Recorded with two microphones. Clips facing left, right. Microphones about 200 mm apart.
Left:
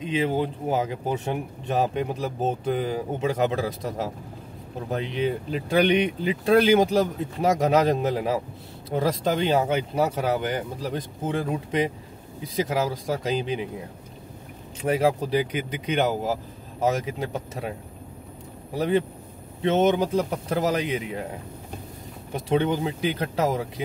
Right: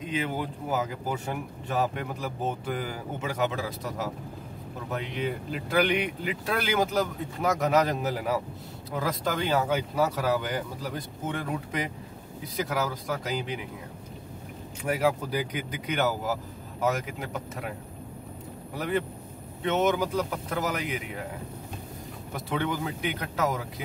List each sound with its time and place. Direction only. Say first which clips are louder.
0.0 s speech: left 6 dB; 25° left (ahead or behind)
14.8 s speech: left 4 dB; 25° left (ahead or behind)
18.8 s speech: left 6 dB; 30° left (ahead or behind)
22.3 s speech: left 7 dB; 25° left (ahead or behind)